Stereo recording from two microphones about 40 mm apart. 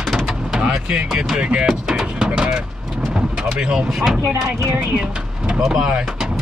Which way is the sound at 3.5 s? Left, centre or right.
Centre.